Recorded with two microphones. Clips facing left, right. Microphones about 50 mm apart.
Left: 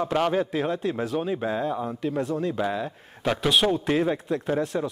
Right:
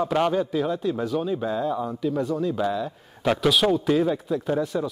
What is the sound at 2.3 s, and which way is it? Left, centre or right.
Speech, left.